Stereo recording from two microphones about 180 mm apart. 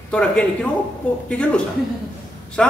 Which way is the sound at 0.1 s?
5° left (ahead or behind).